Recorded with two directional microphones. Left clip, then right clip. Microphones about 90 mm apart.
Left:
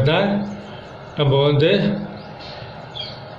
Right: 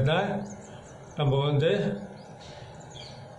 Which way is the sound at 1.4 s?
85° left.